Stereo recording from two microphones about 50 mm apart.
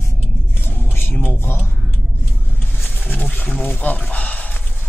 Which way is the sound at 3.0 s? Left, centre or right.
Left.